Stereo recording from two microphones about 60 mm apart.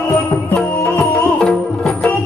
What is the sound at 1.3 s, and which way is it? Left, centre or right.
Music, centre.